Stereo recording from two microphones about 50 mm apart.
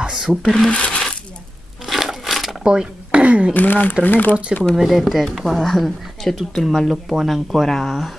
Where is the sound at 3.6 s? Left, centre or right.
Left.